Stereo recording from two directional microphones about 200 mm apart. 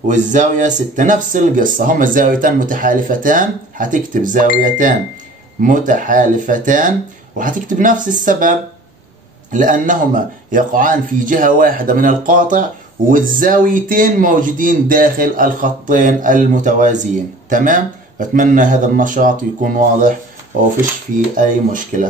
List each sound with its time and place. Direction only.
0.1 s speech: 40° right (ahead or behind)
21.4 s speech: 40° right (ahead or behind)